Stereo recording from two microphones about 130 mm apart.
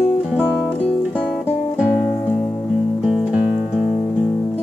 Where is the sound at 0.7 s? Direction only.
10° left (ahead or behind).